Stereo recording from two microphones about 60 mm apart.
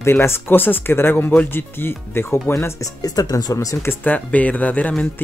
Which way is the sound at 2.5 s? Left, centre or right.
Left.